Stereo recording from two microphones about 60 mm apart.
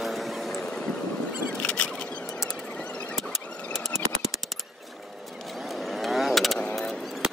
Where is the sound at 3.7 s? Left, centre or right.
Centre.